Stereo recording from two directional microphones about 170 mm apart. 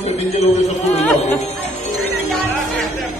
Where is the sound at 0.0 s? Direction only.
40° left (ahead or behind).